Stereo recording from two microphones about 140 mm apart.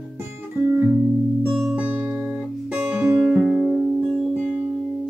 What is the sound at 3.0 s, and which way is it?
Music, 15° right (ahead or behind).